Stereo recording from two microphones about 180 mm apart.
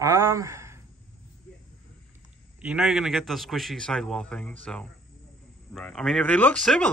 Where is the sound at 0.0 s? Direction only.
15° right (ahead or behind).